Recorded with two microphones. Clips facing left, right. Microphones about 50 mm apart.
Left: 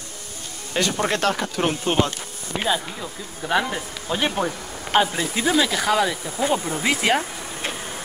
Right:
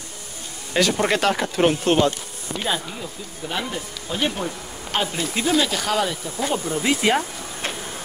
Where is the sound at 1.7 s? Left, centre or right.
Centre.